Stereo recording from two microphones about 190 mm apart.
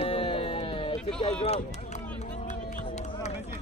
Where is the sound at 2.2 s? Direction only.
40° left (ahead or behind).